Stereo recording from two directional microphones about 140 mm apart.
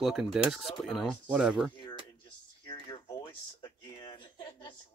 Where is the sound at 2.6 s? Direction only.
30° left (ahead or behind).